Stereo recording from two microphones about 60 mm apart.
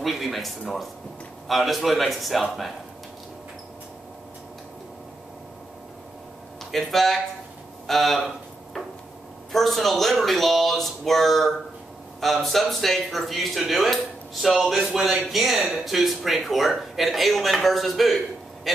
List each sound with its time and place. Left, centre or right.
0.0 s a man's voice: centre
6.7 s speech: centre
9.5 s speech: centre